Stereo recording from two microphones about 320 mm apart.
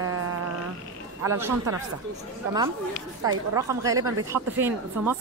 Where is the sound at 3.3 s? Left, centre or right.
Centre.